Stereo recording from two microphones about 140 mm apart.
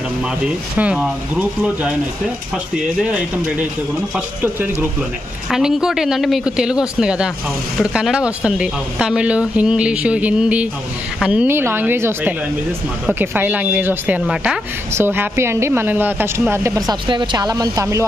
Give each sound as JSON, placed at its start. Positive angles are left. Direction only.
{"t": 0.7, "sound": "speech", "side_deg": -10}
{"t": 15.0, "sound": "a woman's voice", "side_deg": -15}